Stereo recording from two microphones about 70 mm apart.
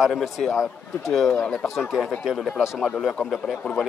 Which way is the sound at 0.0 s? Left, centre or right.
Centre.